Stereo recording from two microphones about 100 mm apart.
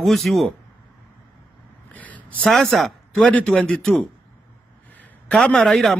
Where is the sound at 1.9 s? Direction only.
15° left (ahead or behind).